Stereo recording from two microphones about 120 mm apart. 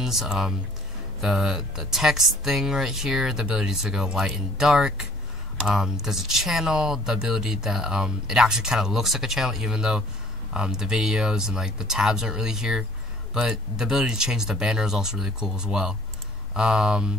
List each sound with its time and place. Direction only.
0.0 s speech: centre (ahead or behind)